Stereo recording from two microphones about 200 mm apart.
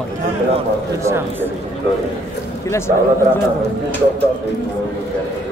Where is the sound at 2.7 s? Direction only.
15° left (ahead or behind).